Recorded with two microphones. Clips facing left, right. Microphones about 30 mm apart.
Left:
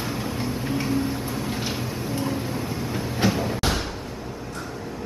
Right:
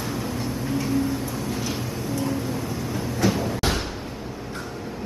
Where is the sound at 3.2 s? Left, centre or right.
Left.